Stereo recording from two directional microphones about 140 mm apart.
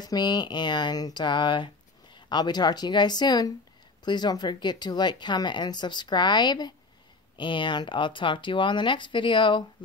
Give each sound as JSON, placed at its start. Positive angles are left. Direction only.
{"t": 0.0, "sound": "speech", "side_deg": 30}